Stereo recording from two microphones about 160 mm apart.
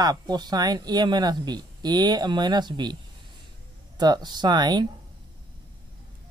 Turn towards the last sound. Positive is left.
turn(degrees=-25)  # may be behind; listen again after turning